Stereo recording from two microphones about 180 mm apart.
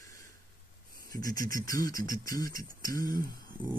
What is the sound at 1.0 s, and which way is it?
Speech, 20° left (ahead or behind).